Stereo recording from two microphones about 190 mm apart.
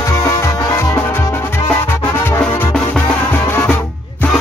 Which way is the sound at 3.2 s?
10° left (ahead or behind).